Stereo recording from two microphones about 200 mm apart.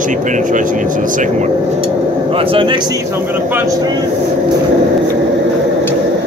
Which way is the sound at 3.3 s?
10° right (ahead or behind).